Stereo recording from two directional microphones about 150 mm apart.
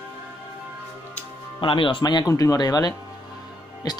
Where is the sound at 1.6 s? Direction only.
35° left (ahead or behind).